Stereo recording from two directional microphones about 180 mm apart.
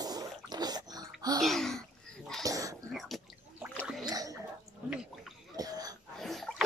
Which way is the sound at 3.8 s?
5° right (ahead or behind).